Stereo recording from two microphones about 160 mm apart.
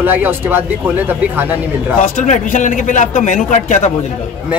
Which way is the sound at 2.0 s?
55° left (ahead or behind).